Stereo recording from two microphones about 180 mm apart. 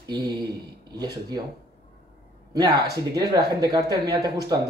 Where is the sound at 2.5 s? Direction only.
20° right (ahead or behind).